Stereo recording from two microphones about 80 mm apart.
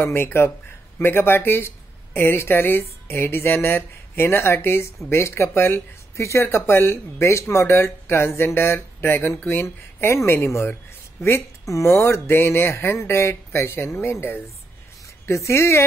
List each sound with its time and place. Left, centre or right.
0.0 s speech: left
15.2 s speech: left